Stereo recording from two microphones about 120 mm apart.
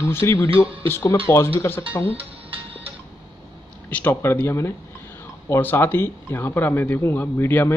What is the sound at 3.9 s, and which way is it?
Speech, 15° left (ahead or behind).